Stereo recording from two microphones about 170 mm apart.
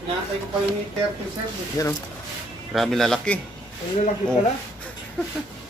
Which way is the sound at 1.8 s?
20° left (ahead or behind).